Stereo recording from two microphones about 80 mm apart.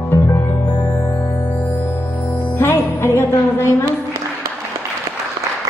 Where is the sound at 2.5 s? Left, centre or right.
Left.